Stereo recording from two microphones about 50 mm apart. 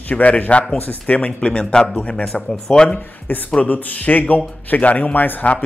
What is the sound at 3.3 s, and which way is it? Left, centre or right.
A man's voice, left.